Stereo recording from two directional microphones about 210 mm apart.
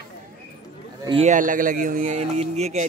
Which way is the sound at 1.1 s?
30° right (ahead or behind).